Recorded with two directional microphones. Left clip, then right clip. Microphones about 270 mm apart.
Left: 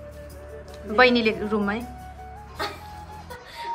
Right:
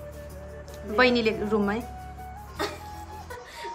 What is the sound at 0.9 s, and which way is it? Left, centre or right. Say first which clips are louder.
Speech: left 3 dB; centre.